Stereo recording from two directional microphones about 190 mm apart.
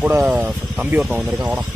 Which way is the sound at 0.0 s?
5° right (ahead or behind).